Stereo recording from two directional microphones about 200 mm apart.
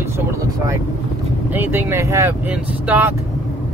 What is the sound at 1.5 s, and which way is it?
Speech, 10° right (ahead or behind).